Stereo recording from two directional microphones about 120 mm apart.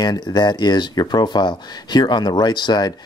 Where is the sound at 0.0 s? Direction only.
35° left (ahead or behind).